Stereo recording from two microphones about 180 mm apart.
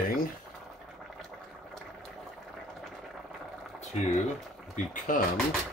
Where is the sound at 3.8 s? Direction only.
40° left (ahead or behind).